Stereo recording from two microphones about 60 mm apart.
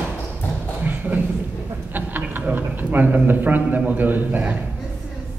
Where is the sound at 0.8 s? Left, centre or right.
Right.